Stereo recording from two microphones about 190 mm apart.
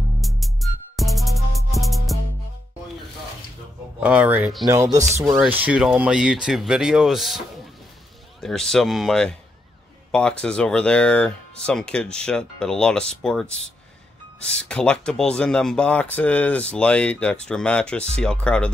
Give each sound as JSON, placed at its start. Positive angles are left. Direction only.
{"t": 0.2, "sound": "music", "side_deg": 0}
{"t": 4.0, "sound": "speech", "side_deg": -5}
{"t": 5.1, "sound": "speech", "side_deg": -15}